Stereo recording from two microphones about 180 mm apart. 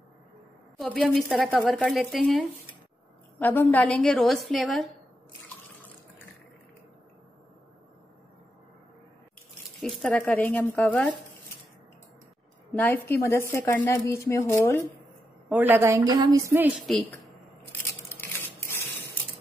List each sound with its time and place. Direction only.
0.7 s speech: centre (ahead or behind)
9.8 s speech: 5° left (ahead or behind)
12.7 s speech: 10° left (ahead or behind)
15.5 s a woman's voice: 10° right (ahead or behind)
18.1 s a sound: 10° left (ahead or behind)